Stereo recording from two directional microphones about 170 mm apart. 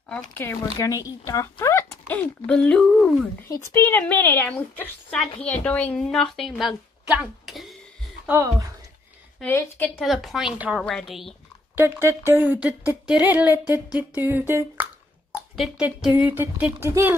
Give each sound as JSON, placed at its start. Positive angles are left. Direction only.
{"t": 0.1, "sound": "a woman's voice", "side_deg": 10}
{"t": 3.4, "sound": "a woman's voice", "side_deg": 15}
{"t": 8.3, "sound": "speech", "side_deg": -20}
{"t": 9.4, "sound": "a woman's voice", "side_deg": 10}
{"t": 9.9, "sound": "a woman's voice", "side_deg": 0}
{"t": 11.7, "sound": "speech", "side_deg": -10}